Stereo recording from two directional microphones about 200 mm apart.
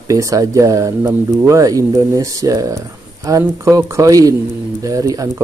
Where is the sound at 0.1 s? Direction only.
15° right (ahead or behind).